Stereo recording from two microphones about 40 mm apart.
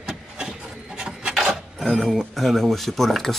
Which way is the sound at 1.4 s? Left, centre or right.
Centre.